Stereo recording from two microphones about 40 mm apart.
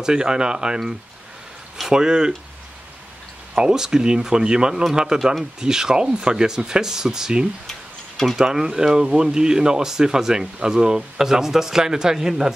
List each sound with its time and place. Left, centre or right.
0.0 s speech: centre
1.9 s speech: centre
3.6 s speech: centre
8.4 s speech: centre